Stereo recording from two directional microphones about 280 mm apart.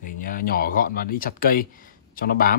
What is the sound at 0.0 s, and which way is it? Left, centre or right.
Speech, left.